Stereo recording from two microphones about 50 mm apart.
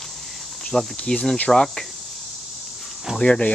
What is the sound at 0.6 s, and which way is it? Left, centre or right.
Speech, centre.